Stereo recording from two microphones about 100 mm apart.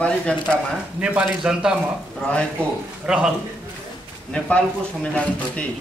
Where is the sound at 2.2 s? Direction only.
10° left (ahead or behind).